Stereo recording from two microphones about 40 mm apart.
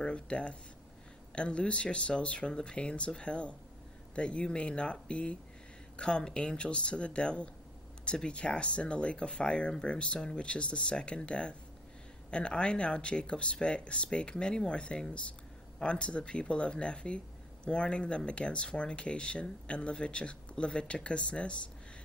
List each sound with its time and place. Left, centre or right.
0.0 s speech: left